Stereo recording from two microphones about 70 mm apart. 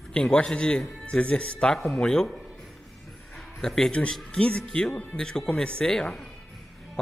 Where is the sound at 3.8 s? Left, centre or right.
Centre.